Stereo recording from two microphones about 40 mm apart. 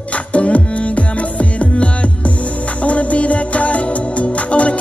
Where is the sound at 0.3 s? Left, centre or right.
Left.